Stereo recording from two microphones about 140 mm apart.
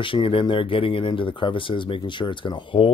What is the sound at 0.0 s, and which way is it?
Speech, 40° left (ahead or behind).